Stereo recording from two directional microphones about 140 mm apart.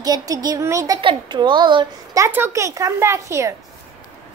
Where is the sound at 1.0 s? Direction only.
35° right (ahead or behind).